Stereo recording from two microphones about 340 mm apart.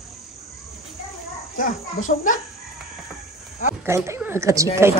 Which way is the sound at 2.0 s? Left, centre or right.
Left.